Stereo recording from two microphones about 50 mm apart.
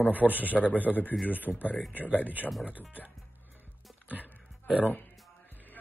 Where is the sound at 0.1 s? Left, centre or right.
Right.